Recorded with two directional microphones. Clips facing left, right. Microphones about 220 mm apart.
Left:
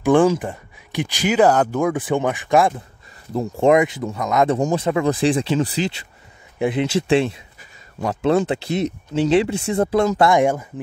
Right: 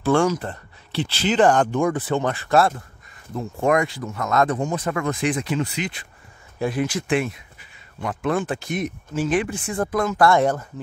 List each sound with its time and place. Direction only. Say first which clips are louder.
0.0 s speech: left 4 dB; 20° left (ahead or behind)
3.3 s speech: left 5 dB; 25° left (ahead or behind)
6.6 s speech: left 4 dB; 20° left (ahead or behind)